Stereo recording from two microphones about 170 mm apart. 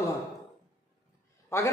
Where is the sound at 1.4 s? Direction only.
15° left (ahead or behind).